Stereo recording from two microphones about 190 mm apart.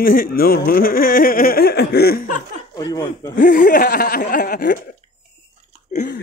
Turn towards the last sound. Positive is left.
turn(degrees=45)  # may be behind; listen again after turning